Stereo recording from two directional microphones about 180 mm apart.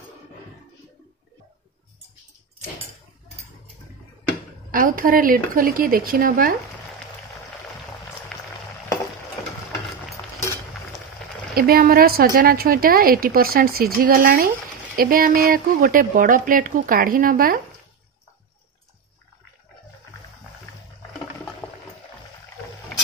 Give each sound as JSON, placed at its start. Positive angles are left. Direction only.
{"t": 4.6, "sound": "a woman's voice", "side_deg": -50}
{"t": 11.5, "sound": "a woman's voice", "side_deg": -55}